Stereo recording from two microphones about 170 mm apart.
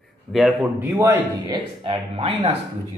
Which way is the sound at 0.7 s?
15° right (ahead or behind).